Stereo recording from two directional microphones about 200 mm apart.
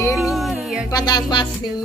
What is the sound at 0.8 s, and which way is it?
Music, 20° left (ahead or behind).